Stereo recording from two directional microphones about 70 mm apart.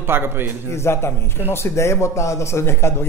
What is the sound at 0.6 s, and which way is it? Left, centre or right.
Speech, left.